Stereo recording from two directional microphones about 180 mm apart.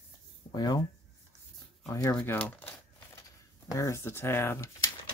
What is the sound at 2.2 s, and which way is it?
Crumpling, 10° left (ahead or behind).